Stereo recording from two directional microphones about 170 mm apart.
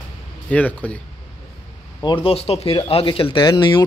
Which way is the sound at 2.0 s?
30° left (ahead or behind).